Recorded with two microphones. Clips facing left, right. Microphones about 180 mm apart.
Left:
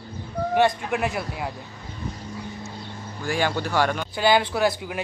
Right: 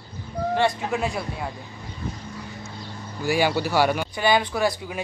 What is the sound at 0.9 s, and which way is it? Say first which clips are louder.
Speech: even; centre (ahead or behind).